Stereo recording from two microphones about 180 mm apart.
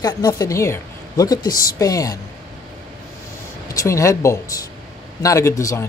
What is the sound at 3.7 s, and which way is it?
Speech, 15° left (ahead or behind).